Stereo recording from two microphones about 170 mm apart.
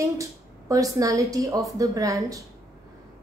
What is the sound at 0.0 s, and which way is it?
Speech, 20° right (ahead or behind).